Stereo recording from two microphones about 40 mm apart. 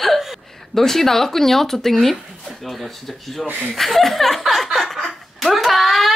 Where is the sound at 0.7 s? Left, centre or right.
Centre.